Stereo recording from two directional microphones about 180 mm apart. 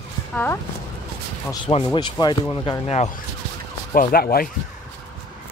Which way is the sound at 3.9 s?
50° left (ahead or behind).